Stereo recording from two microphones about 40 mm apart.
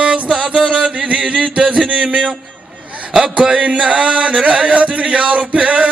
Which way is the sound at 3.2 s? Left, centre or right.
Centre.